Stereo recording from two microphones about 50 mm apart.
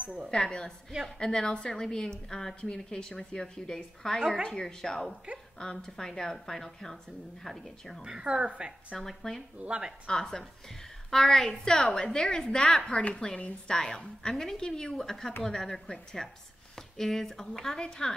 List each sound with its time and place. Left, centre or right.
0.3 s a woman's voice: centre
8.0 s a woman's voice: centre
8.9 s a woman's voice: centre
9.6 s speech: centre
10.0 s a woman's voice: centre
14.6 s a woman's voice: centre